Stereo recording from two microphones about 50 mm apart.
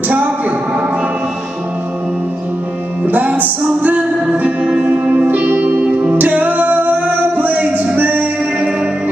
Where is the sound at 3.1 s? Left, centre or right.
Right.